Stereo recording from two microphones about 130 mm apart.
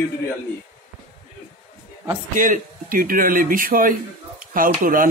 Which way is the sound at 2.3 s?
85° right.